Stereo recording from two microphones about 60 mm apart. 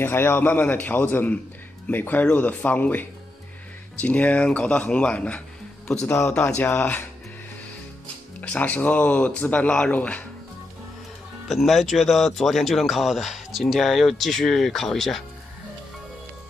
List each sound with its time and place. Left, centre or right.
0.0 s speech: left; by 5.4 s centre
6.0 s speech: left
6.5 s speech: left
8.4 s speech: left
11.4 s speech: centre